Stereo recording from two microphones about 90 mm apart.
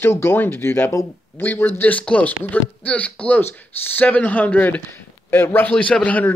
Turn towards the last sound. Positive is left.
turn(degrees=15)  # may be behind; listen again after turning